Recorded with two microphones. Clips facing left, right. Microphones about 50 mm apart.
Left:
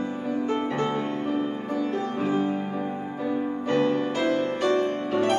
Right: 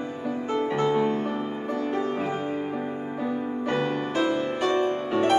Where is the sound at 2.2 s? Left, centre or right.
Right.